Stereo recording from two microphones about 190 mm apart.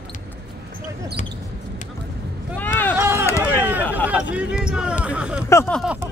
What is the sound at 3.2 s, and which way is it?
Run, 10° left (ahead or behind).